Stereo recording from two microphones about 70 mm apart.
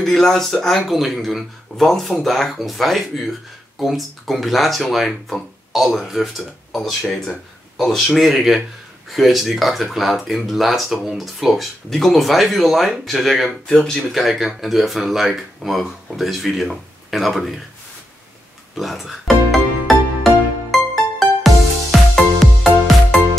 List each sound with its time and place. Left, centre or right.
0.0 s speech: centre
18.8 s speech: centre
19.9 s music: centre